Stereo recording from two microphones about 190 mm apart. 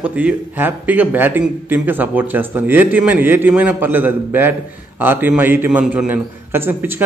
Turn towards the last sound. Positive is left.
turn(degrees=-10)  # may be behind; listen again after turning